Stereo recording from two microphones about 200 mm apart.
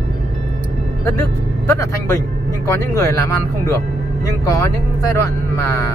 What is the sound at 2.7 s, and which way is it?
Speech, 15° left (ahead or behind).